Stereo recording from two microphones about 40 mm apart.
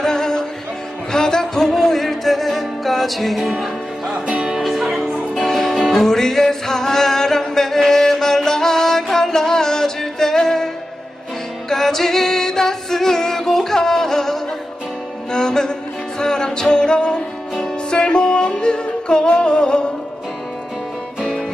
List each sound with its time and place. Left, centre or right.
0.0 s music: centre
4.1 s music: centre
11.7 s music: centre; by 19.9 s left